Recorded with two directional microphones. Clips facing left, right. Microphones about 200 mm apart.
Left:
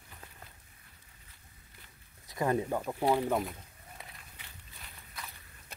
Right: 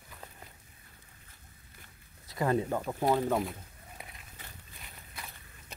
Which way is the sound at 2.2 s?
20° left (ahead or behind).